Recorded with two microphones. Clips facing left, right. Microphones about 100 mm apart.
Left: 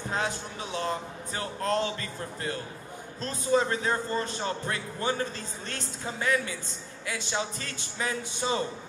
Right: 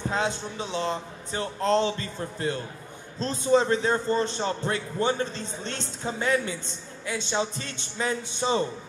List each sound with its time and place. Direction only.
0.1 s a man's voice: 25° right (ahead or behind)